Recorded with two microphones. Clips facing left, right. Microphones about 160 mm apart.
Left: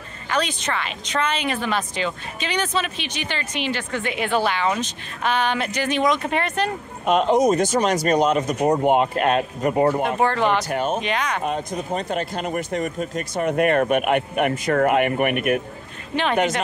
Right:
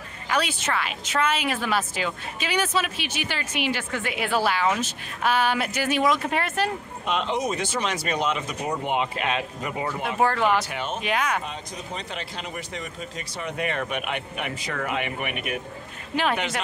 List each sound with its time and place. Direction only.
0.3 s speech: 5° right (ahead or behind)
7.1 s speech: 45° left (ahead or behind)
10.1 s speech: 5° right (ahead or behind)
10.6 s speech: 40° left (ahead or behind)
11.0 s speech: 5° right (ahead or behind)
11.4 s speech: 50° left (ahead or behind)